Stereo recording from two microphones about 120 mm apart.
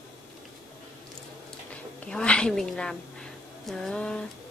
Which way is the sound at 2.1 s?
5° left (ahead or behind).